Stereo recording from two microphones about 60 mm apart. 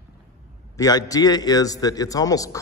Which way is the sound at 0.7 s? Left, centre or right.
Left.